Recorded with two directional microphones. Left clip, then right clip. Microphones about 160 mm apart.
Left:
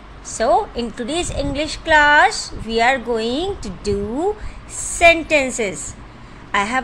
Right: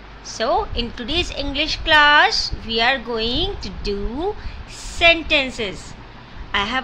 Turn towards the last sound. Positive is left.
turn(degrees=20)  # may be behind; listen again after turning